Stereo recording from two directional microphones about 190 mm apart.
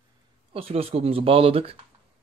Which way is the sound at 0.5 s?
30° right (ahead or behind).